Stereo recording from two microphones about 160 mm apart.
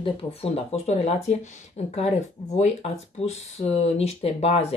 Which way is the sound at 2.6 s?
45° left (ahead or behind).